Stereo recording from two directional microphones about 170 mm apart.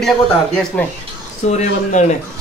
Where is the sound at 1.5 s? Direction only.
45° left (ahead or behind).